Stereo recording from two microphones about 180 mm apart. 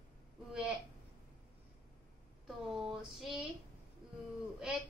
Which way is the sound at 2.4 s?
Centre (ahead or behind).